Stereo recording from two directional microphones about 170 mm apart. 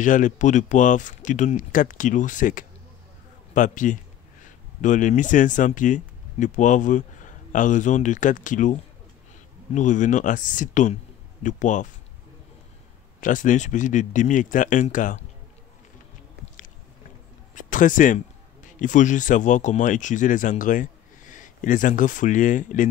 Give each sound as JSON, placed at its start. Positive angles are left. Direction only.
{"t": 0.0, "sound": "speech", "side_deg": 50}
{"t": 13.2, "sound": "speech", "side_deg": 50}
{"t": 17.6, "sound": "speech", "side_deg": 50}